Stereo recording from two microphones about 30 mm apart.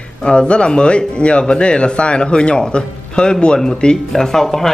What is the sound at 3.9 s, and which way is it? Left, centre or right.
Speech, centre.